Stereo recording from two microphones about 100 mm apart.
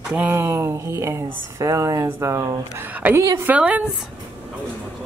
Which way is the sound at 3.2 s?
30° right (ahead or behind).